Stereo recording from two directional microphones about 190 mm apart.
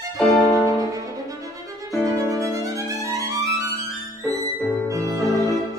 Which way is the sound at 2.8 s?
15° right (ahead or behind).